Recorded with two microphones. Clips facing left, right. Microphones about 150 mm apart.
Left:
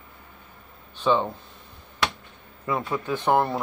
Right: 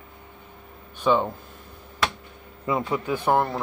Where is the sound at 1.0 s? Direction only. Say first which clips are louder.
Right 1 dB; 10° right (ahead or behind).